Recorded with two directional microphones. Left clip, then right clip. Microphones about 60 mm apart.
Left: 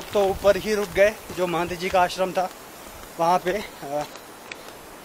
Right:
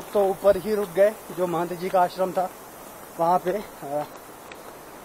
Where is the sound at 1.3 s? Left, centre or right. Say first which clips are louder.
Left 1 dB; left.